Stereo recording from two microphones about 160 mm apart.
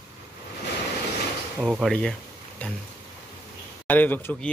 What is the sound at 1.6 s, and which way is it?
Speech, 5° right (ahead or behind).